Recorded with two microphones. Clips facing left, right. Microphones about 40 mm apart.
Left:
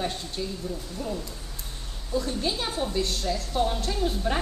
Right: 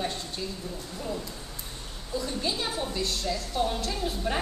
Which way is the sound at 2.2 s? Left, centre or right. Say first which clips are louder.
Left 2 dB; centre.